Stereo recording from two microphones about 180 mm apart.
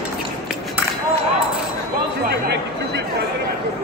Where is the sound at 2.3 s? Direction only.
65° right (ahead or behind).